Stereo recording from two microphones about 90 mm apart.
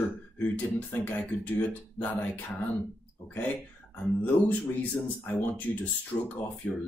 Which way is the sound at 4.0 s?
20° left (ahead or behind).